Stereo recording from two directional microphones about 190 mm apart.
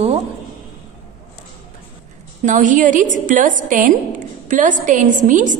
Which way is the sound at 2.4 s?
40° right (ahead or behind).